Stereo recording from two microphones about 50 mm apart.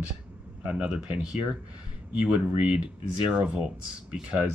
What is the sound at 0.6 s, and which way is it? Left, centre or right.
Speech, centre.